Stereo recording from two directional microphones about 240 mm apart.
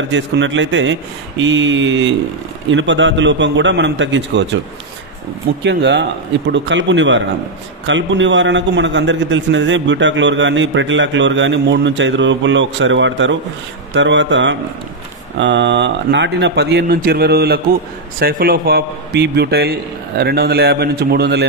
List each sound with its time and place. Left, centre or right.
0.1 s a man's voice: right
5.6 s a man's voice: right